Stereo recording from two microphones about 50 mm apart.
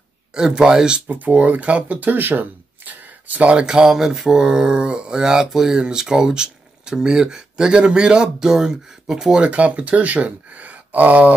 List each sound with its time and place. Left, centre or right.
0.3 s speech: centre
1.0 s speech: right
3.5 s speech: centre
9.4 s speech: right